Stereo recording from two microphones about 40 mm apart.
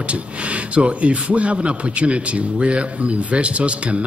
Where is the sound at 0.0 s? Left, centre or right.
Right.